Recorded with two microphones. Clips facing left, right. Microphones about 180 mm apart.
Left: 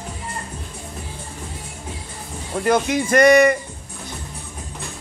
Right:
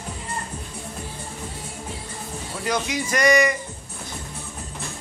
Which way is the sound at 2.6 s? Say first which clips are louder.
Left 7 dB; 55° left (ahead or behind).